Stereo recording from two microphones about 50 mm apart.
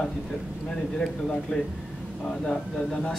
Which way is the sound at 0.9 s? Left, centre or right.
Centre.